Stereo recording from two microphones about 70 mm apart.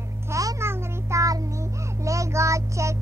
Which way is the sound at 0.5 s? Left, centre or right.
Right.